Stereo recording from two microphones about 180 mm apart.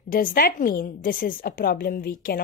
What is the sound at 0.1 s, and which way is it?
A woman's voice, 50° left (ahead or behind).